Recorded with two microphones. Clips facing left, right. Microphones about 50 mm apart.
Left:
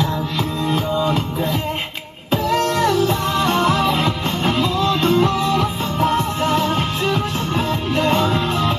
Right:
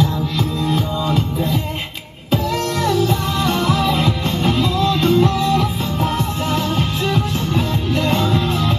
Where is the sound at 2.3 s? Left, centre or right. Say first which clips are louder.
Left 2 dB; left.